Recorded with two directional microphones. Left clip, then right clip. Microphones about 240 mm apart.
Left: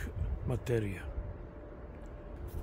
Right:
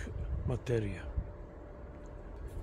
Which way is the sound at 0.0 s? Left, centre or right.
Centre.